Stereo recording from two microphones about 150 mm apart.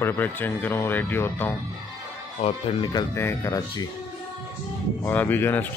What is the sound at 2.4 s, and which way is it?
Speech, 45° left (ahead or behind).